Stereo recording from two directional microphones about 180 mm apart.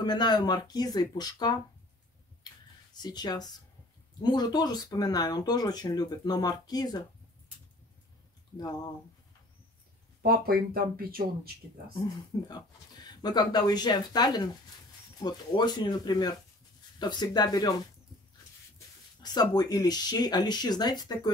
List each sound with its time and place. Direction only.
0.0 s speech: 25° left (ahead or behind)
2.9 s speech: 25° left (ahead or behind)
10.2 s speech: 55° right (ahead or behind)
12.4 s speech: 25° left (ahead or behind)
19.2 s speech: 20° left (ahead or behind)